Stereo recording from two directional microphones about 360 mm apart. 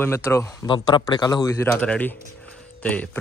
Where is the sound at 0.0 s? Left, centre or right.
Centre.